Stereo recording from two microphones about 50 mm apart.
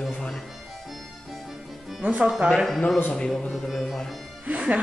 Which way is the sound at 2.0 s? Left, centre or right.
Right.